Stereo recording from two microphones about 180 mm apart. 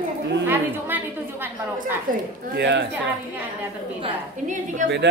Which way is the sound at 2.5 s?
75° right (ahead or behind).